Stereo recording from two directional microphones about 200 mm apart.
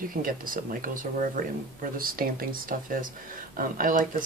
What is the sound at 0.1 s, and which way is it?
Speech, 45° right (ahead or behind).